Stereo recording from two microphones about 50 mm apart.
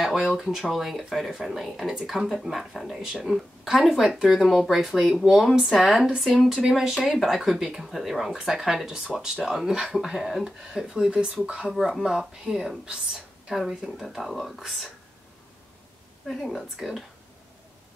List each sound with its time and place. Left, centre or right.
0.0 s speech: centre
11.7 s speech: centre
16.3 s speech: centre